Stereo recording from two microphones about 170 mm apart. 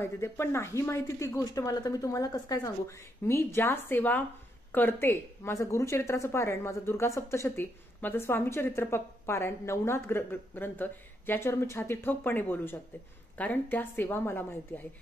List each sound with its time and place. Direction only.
0.0 s a woman's voice: 15° left (ahead or behind)